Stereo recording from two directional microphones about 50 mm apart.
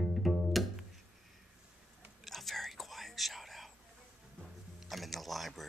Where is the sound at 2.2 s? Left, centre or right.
Centre.